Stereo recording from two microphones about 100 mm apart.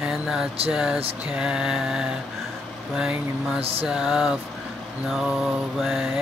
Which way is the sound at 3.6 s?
75° right (ahead or behind).